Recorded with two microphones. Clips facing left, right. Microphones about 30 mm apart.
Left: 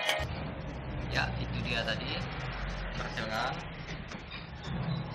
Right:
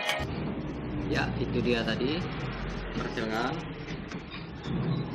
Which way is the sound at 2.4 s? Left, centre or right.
Centre.